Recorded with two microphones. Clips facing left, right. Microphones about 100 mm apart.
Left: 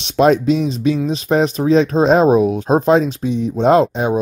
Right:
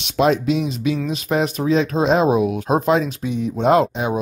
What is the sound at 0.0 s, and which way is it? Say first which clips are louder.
Speech: left 4 dB; 40° left (ahead or behind).